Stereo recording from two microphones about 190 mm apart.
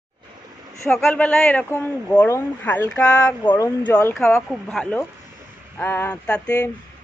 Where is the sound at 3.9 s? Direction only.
10° left (ahead or behind).